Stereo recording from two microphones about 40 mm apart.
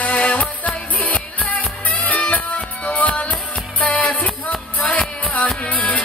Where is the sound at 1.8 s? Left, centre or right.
Left.